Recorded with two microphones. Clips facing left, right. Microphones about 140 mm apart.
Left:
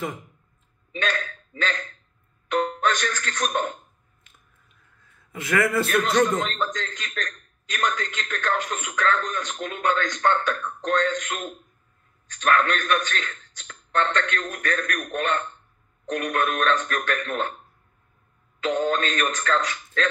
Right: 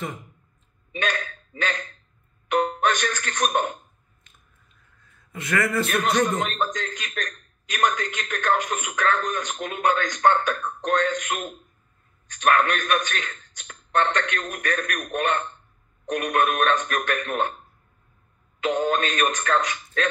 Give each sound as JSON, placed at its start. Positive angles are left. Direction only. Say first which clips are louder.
{"t": 1.0, "sound": "a man's voice", "louder": "even", "side_deg": -20}
{"t": 2.4, "sound": "music", "louder": "right 1 dB", "side_deg": -20}
{"t": 2.8, "sound": "a man's voice", "louder": "right 1 dB", "side_deg": -15}
{"t": 5.9, "sound": "a man's voice", "louder": "left 1 dB", "side_deg": -20}
{"t": 18.6, "sound": "speech", "louder": "right 1 dB", "side_deg": -20}